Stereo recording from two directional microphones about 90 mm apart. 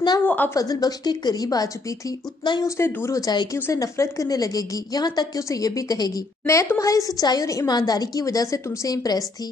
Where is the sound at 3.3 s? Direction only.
50° left (ahead or behind).